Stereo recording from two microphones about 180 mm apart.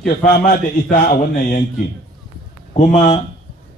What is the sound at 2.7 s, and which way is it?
Speech, 45° left (ahead or behind).